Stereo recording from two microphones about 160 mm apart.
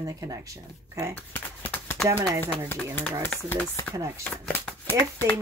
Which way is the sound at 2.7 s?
10° left (ahead or behind).